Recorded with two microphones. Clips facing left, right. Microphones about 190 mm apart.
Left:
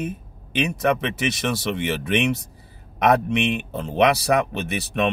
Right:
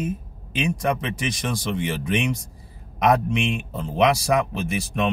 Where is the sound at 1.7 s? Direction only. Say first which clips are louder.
Left 1 dB; 65° left (ahead or behind).